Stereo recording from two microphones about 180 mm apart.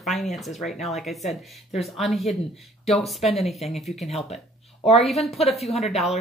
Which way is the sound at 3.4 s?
Centre (ahead or behind).